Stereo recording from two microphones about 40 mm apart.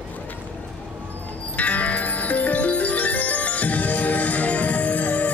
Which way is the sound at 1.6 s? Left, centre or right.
Left.